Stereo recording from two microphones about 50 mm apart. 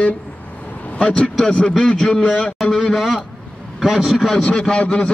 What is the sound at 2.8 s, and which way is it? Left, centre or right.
A man's voice, centre.